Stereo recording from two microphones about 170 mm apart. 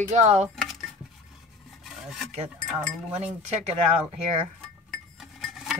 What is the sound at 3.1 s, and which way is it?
Cutlery, 40° right (ahead or behind).